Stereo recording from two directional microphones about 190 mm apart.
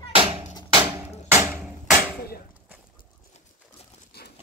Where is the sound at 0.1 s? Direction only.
30° right (ahead or behind).